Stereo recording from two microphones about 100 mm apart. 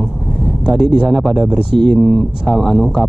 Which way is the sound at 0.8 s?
Centre (ahead or behind).